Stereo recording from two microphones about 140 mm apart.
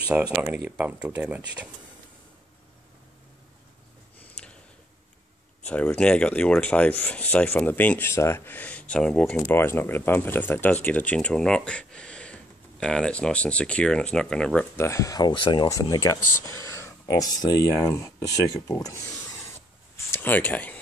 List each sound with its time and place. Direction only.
0.1 s speech: 10° right (ahead or behind)
5.7 s speech: 10° left (ahead or behind)
9.4 s speech: 15° left (ahead or behind)
14.8 s speech: 20° left (ahead or behind)
20.1 s speech: 15° left (ahead or behind)